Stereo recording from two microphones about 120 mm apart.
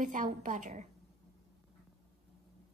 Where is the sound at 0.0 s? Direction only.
90° right.